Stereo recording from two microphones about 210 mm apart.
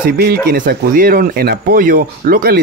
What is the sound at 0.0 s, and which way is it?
Speech, 45° right (ahead or behind).